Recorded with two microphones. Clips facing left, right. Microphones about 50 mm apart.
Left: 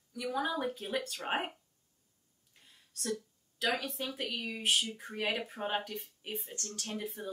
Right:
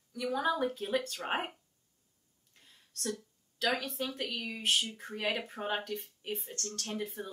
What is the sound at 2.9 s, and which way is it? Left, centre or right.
Speech, centre.